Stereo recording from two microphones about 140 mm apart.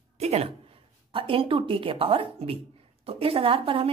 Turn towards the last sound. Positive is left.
turn(degrees=-40)  # may be behind; listen again after turning